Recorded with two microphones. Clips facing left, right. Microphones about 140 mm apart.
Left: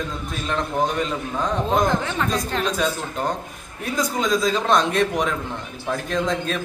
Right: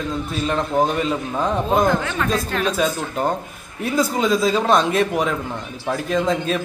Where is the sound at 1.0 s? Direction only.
5° right (ahead or behind).